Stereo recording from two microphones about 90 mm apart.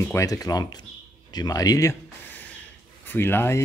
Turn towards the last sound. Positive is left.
turn(degrees=25)  # may be behind; listen again after turning